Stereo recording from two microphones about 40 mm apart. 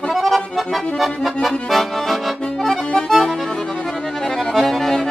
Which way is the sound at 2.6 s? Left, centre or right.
Centre.